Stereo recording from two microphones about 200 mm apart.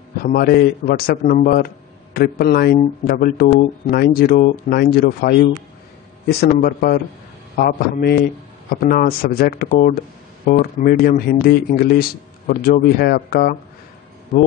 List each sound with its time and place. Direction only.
0.2 s speech: 50° left (ahead or behind)